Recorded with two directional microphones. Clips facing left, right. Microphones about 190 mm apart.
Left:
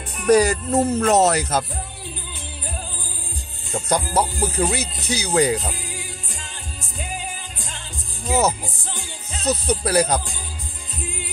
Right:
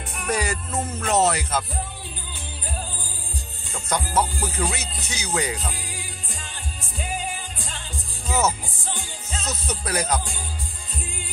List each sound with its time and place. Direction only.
0.3 s speech: 40° left (ahead or behind)
3.7 s speech: 35° left (ahead or behind)
9.4 s speech: 35° left (ahead or behind)